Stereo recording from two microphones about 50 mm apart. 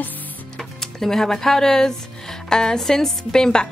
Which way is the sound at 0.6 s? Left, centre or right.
Centre.